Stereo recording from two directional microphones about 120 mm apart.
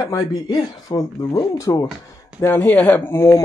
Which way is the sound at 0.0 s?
30° left (ahead or behind).